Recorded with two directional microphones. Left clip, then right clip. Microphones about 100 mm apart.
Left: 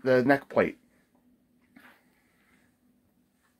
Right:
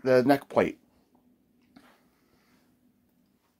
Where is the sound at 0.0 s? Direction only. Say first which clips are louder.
Right 1 dB; 5° right (ahead or behind).